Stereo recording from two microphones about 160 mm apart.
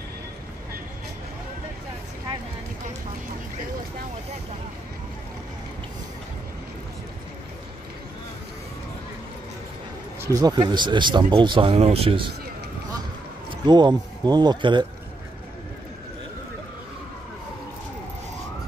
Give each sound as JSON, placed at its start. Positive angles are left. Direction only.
{"t": 10.2, "sound": "speech", "side_deg": -20}
{"t": 13.5, "sound": "speech", "side_deg": -30}